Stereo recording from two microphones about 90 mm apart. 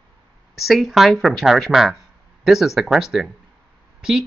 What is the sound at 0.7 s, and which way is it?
Speech, centre (ahead or behind).